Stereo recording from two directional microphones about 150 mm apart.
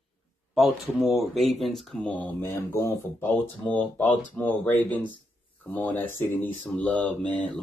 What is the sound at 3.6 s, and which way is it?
Mantra, 10° left (ahead or behind).